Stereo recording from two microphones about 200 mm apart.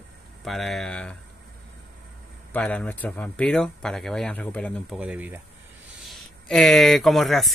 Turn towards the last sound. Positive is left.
turn(degrees=0)  # may be behind; listen again after turning